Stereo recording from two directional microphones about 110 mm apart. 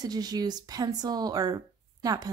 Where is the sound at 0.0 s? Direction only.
35° right (ahead or behind).